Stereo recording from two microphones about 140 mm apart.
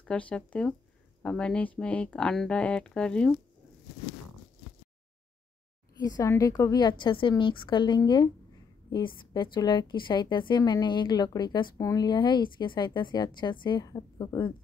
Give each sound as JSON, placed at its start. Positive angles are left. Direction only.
{"t": 0.0, "sound": "speech", "side_deg": 10}
{"t": 5.9, "sound": "a woman's voice", "side_deg": 25}